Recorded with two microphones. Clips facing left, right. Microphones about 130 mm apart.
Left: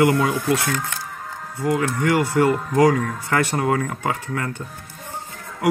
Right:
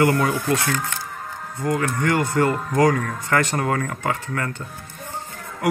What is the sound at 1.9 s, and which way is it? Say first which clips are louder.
Speech: left 2 dB; 15° left (ahead or behind).